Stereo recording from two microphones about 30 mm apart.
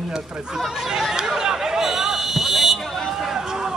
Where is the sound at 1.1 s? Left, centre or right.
Centre.